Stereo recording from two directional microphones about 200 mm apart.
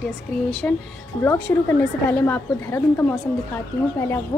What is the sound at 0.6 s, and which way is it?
Speech, 10° left (ahead or behind).